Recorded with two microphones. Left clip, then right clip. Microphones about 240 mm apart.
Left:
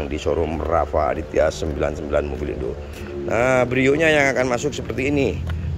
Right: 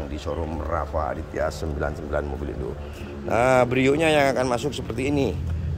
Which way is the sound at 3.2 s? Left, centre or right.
Centre.